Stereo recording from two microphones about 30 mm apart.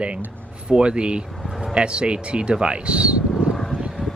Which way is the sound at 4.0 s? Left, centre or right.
Centre.